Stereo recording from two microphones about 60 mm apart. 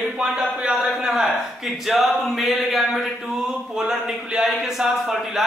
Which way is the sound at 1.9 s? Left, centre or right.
Centre.